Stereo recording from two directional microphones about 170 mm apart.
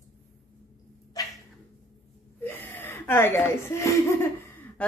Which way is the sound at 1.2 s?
20° left (ahead or behind).